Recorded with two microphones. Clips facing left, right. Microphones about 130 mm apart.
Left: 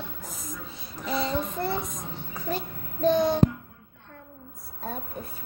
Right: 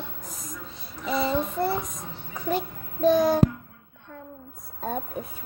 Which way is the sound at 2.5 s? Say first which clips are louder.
Right 5 dB; 10° right (ahead or behind).